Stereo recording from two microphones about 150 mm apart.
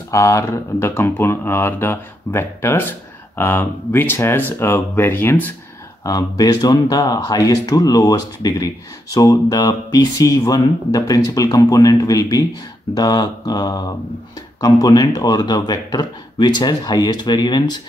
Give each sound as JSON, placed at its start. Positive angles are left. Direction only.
{"t": 0.1, "sound": "speech", "side_deg": 20}
{"t": 6.0, "sound": "speech", "side_deg": 25}